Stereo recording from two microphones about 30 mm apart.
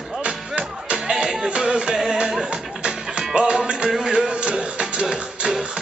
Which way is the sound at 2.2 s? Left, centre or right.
Right.